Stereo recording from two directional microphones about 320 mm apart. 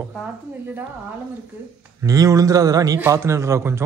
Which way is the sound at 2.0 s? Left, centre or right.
Centre.